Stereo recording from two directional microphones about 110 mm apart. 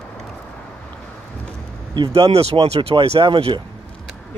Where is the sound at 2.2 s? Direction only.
60° right (ahead or behind).